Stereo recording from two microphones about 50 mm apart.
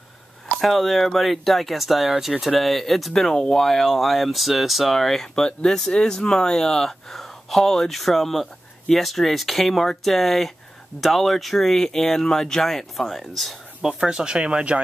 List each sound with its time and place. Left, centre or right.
0.6 s speech: centre
13.8 s speech: centre